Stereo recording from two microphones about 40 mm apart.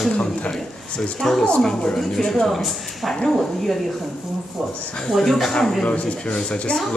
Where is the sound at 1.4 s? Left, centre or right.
Left.